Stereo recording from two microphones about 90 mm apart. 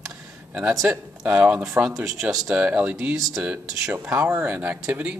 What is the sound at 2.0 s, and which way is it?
Speech, 5° right (ahead or behind).